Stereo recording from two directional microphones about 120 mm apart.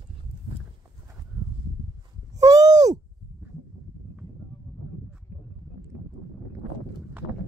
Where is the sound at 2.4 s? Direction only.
30° right (ahead or behind).